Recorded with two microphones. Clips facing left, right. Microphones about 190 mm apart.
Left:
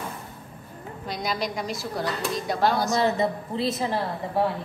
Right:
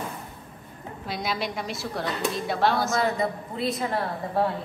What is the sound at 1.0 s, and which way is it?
Speech, centre (ahead or behind).